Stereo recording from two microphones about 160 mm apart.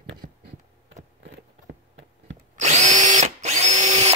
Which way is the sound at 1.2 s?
90° right.